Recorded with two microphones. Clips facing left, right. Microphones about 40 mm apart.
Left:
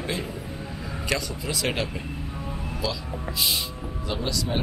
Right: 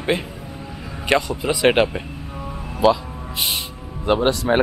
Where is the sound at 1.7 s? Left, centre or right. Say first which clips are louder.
Right 13 dB; right.